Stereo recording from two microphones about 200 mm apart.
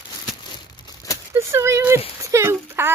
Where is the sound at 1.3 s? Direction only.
15° right (ahead or behind).